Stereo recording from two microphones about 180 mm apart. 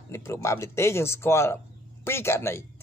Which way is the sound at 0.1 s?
15° left (ahead or behind).